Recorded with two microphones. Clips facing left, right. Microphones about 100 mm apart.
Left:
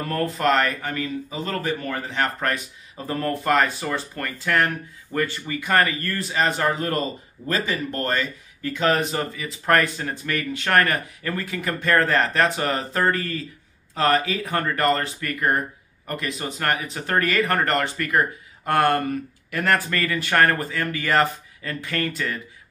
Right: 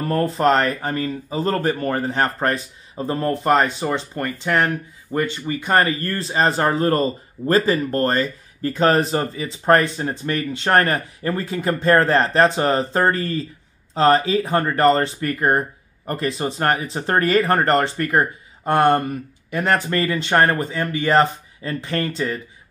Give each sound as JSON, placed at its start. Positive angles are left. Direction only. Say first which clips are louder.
{"t": 0.1, "sound": "speech", "louder": "right 4 dB", "side_deg": -30}